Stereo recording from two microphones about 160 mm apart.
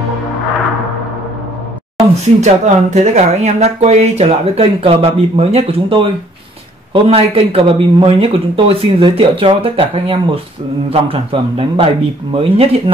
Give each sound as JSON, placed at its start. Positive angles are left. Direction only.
{"t": 2.4, "sound": "speech", "side_deg": -45}